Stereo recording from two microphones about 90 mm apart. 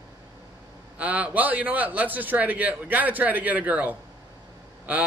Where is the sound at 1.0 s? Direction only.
15° right (ahead or behind).